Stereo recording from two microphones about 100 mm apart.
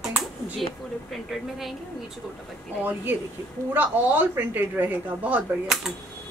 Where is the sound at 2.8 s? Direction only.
20° right (ahead or behind).